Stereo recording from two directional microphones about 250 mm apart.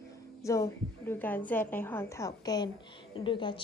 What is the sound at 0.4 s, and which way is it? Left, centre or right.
A woman's voice, centre.